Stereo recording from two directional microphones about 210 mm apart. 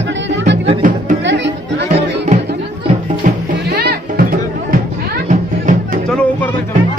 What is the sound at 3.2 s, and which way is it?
Music, 50° right (ahead or behind).